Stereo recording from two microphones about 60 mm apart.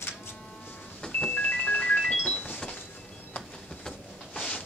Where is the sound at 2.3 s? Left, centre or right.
Left.